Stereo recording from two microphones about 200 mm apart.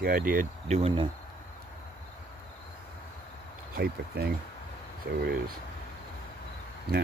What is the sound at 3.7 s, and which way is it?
Speech, 50° right (ahead or behind).